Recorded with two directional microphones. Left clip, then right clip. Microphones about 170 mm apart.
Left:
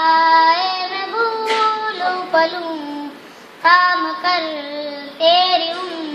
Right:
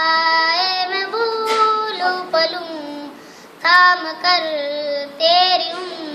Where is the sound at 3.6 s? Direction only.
20° right (ahead or behind).